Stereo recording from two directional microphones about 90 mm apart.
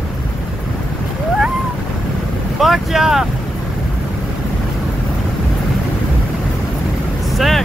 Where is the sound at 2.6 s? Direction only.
5° right (ahead or behind).